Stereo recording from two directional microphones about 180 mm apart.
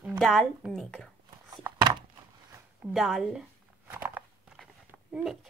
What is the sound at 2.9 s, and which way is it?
Speech, centre (ahead or behind).